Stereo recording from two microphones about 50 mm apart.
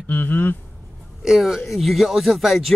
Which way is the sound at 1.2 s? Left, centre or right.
Centre.